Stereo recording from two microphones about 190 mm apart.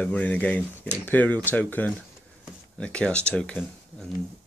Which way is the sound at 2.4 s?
5° left (ahead or behind).